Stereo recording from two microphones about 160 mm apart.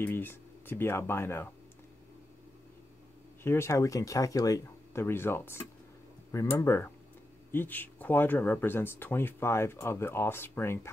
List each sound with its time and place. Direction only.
0.0 s speech: 15° left (ahead or behind)
3.4 s speech: 15° left (ahead or behind)